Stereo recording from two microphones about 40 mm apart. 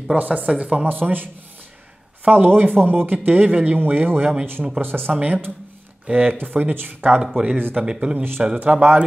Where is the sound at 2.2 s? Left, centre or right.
Right.